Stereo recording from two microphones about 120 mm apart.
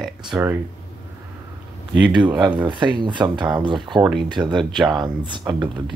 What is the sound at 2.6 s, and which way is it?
Speech, 40° right (ahead or behind).